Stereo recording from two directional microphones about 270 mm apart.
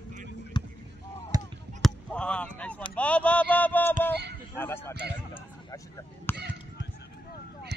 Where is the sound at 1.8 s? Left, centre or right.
Centre.